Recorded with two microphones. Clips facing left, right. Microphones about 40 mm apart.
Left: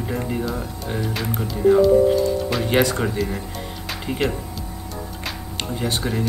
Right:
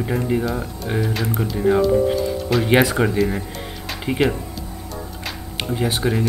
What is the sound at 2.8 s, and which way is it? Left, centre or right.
Speech, centre.